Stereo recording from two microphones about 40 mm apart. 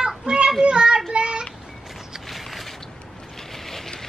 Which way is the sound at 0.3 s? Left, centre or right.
Centre.